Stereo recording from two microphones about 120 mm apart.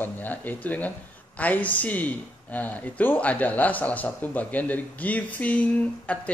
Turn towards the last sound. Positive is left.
turn(degrees=10)  # may be behind; listen again after turning